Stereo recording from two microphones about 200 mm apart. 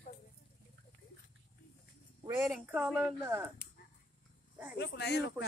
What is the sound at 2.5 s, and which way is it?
A woman's voice, 5° right (ahead or behind).